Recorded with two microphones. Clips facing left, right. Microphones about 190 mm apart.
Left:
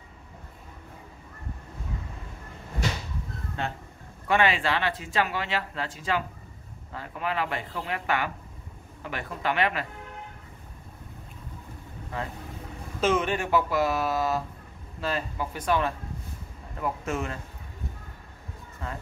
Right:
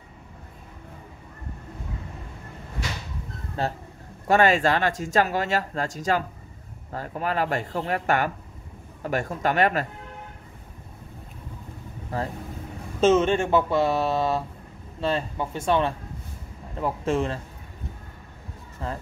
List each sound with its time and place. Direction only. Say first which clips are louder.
3.6 s speech: right 6 dB; 35° right (ahead or behind)
12.1 s speech: right 5 dB; 40° right (ahead or behind)
13.0 s speech: right 6 dB; 25° right (ahead or behind)
18.8 s speech: right 5 dB; 30° right (ahead or behind)